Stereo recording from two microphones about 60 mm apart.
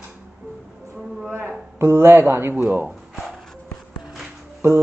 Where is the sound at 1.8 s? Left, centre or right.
Right.